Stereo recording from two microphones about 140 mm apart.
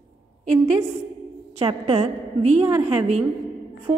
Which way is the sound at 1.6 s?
45° right (ahead or behind).